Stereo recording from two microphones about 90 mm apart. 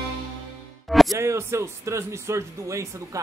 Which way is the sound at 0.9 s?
Centre (ahead or behind).